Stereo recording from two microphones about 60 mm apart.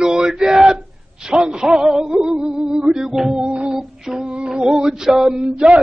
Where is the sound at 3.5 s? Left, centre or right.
Centre.